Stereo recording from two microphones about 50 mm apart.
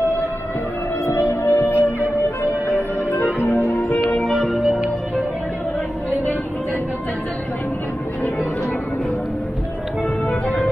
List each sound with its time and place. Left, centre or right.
1.5 s music: left
3.3 s music: left
4.2 s music: centre